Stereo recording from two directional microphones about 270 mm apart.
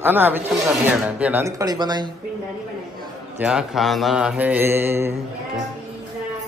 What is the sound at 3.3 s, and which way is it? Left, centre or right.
Mantra, centre.